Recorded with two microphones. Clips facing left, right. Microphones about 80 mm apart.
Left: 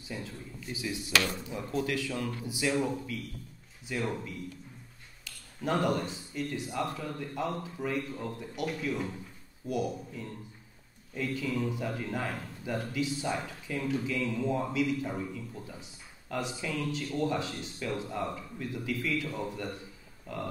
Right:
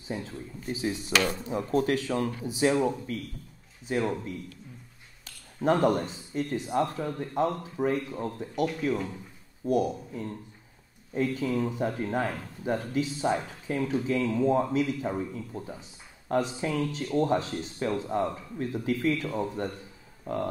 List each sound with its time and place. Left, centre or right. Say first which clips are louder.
0.1 s speech: right 5 dB; right
9.7 s speech: right 6 dB; right